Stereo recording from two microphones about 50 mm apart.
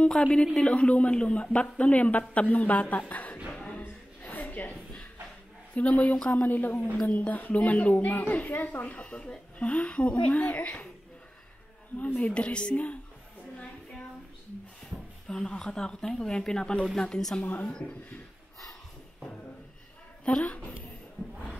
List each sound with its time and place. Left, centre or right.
0.2 s speech: left
3.5 s a sound: centre
3.8 s a sound: left
5.7 s speech: left
6.1 s speech: centre
6.4 s speech: left
8.9 s speech: left
12.2 s speech: left
14.9 s a sound: right
15.2 s speech: centre
17.4 s speech: left
17.6 s speech: centre
20.2 s speech: centre